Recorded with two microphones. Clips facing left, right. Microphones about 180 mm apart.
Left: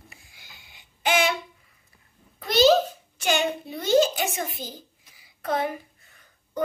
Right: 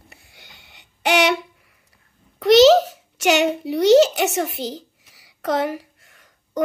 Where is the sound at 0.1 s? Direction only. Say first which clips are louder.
Right 3 dB; 65° right (ahead or behind).